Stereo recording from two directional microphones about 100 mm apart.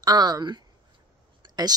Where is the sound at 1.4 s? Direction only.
45° right (ahead or behind).